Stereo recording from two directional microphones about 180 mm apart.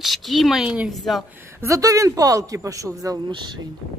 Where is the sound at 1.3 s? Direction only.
10° right (ahead or behind).